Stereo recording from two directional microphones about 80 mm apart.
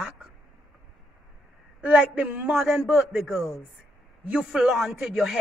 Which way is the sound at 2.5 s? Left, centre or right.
Centre.